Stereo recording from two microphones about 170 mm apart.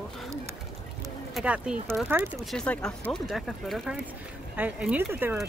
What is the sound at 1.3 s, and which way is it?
Speech, 5° right (ahead or behind).